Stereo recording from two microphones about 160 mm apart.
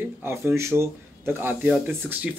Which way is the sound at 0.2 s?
15° right (ahead or behind).